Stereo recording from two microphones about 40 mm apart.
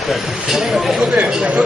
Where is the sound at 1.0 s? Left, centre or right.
Right.